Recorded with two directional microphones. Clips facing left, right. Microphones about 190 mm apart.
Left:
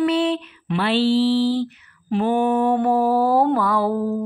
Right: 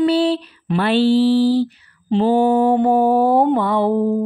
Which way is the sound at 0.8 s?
50° right (ahead or behind).